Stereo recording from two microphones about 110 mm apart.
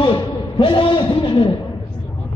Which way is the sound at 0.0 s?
50° left (ahead or behind).